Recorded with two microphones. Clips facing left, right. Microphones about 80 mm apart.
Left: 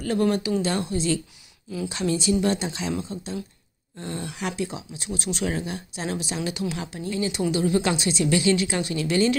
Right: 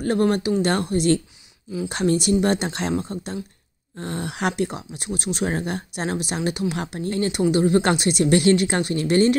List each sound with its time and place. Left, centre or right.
0.0 s speech: right
5.6 s speech: right
7.9 s speech: right